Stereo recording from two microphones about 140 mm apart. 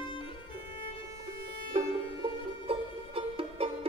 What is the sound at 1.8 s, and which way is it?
Music, 45° right (ahead or behind).